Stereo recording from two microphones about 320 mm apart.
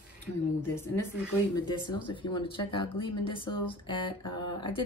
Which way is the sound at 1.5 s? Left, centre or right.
Centre.